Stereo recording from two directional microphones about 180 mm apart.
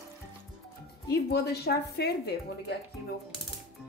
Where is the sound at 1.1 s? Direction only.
60° left (ahead or behind).